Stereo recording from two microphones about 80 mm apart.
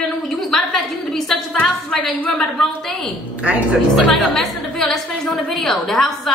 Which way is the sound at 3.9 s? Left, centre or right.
Centre.